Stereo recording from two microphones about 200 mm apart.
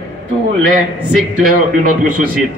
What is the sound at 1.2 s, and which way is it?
A man's voice, 45° right (ahead or behind).